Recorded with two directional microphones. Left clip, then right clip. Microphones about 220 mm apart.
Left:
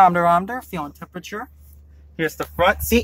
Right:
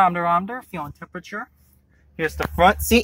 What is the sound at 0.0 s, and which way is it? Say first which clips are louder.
Speech: left 4 dB; 10° left (ahead or behind).